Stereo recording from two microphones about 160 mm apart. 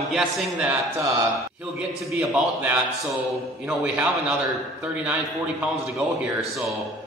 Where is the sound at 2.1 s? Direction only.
5° right (ahead or behind).